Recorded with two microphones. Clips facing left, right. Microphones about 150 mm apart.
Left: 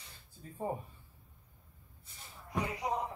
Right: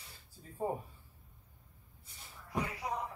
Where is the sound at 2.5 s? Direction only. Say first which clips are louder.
Left 2 dB; 20° left (ahead or behind).